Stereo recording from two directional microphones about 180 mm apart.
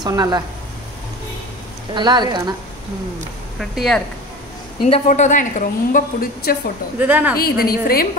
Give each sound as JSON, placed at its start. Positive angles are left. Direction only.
{"t": 0.0, "sound": "speech", "side_deg": -20}
{"t": 2.0, "sound": "speech", "side_deg": -25}
{"t": 3.5, "sound": "speech", "side_deg": 0}
{"t": 4.8, "sound": "a woman's voice", "side_deg": 35}
{"t": 7.0, "sound": "speech", "side_deg": -10}
{"t": 7.3, "sound": "a woman's voice", "side_deg": 55}